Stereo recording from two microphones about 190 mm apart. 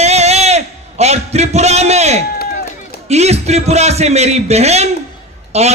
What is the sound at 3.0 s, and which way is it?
A man's voice, 35° right (ahead or behind).